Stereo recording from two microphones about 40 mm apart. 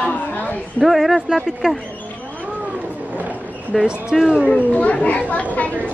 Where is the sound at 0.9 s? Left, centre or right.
Centre.